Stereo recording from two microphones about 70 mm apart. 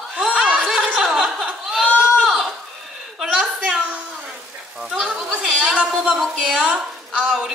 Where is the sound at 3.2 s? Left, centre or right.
Centre.